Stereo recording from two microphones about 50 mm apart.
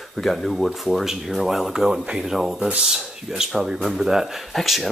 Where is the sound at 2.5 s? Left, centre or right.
Right.